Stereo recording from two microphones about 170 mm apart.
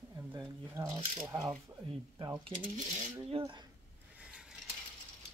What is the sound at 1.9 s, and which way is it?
Speech, 25° right (ahead or behind).